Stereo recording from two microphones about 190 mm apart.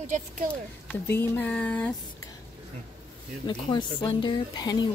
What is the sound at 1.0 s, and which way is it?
Speech, 10° left (ahead or behind).